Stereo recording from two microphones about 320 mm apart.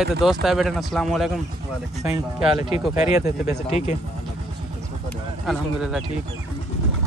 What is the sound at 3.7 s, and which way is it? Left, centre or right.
Speech, left.